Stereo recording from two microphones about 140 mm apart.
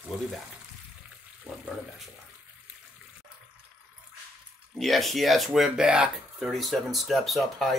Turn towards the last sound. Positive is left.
turn(degrees=0)  # may be behind; listen again after turning